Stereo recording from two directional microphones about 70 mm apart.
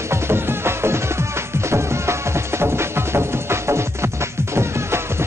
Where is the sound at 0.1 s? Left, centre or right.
Right.